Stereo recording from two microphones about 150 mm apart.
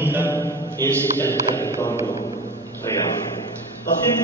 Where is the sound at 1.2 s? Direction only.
15° left (ahead or behind).